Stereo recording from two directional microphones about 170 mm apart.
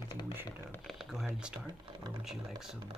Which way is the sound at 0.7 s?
Centre (ahead or behind).